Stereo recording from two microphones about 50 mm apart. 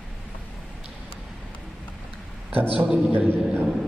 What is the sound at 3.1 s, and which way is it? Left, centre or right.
Speech, right.